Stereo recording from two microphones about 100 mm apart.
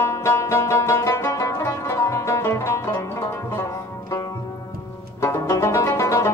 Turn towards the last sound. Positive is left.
turn(degrees=30)  # may be behind; listen again after turning